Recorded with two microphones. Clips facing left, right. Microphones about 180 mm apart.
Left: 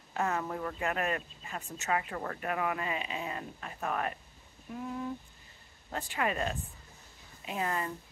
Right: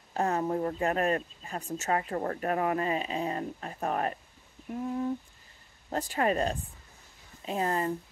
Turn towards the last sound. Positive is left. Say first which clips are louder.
# right 5 dB
turn(degrees=-35)  # may be behind; listen again after turning